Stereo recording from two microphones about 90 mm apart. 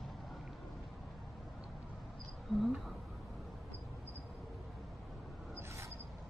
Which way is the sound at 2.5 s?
5° left (ahead or behind).